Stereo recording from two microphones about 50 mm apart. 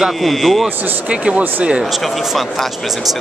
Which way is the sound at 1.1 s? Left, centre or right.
Right.